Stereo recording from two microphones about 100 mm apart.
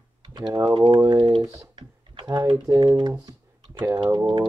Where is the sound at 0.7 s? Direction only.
50° right (ahead or behind).